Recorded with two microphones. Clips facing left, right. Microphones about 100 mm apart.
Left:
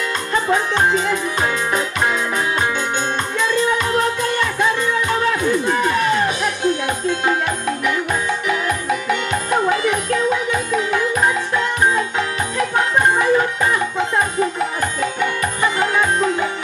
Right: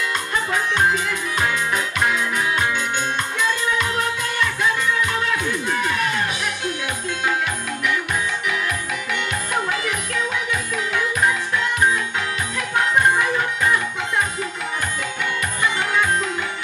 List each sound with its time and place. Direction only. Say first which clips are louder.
0.5 s music: left 3 dB; 30° left (ahead or behind)